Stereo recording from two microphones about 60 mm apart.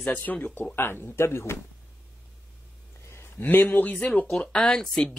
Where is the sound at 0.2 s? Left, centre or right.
Left.